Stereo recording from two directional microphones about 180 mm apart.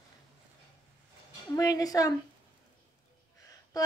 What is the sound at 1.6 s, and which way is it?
Speech, 20° left (ahead or behind).